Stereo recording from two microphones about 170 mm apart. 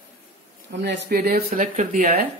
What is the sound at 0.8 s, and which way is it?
Speech, 80° right.